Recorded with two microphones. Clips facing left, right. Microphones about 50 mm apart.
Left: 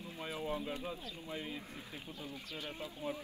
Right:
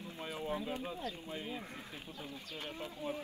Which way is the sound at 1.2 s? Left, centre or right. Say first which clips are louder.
Even; centre.